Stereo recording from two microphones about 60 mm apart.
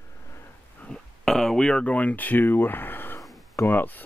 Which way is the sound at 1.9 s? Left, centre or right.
Left.